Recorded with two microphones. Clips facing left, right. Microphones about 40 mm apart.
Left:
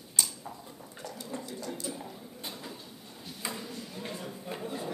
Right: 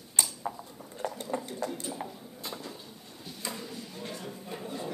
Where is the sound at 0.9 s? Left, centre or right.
Right.